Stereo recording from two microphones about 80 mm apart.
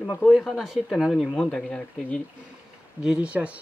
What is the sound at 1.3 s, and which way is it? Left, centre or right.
Speech, centre.